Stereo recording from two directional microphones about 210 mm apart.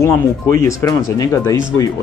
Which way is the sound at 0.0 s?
15° left (ahead or behind).